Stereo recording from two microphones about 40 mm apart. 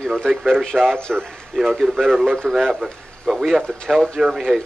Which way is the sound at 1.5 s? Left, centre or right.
Centre.